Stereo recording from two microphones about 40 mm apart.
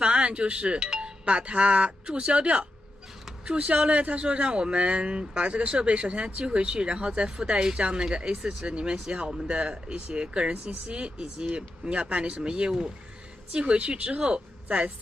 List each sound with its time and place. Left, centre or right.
0.0 s a woman's voice: right